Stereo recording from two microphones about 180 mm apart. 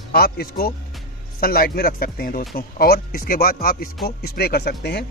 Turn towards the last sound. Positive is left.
turn(degrees=65)  # may be behind; listen again after turning